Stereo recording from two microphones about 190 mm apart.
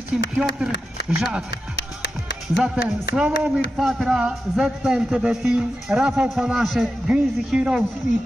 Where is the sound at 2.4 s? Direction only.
Centre (ahead or behind).